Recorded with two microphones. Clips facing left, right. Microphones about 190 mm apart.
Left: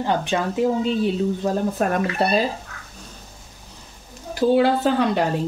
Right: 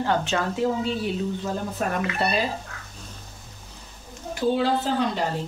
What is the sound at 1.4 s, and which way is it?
Speech, 40° left (ahead or behind).